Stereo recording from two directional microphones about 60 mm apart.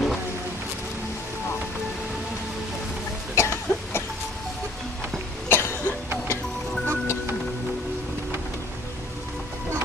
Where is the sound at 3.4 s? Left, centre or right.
Left.